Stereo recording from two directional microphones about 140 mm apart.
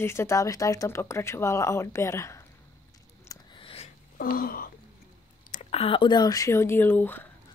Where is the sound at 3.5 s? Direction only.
40° left (ahead or behind).